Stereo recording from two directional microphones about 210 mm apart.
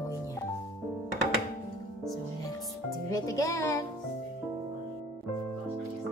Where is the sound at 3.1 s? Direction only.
15° left (ahead or behind).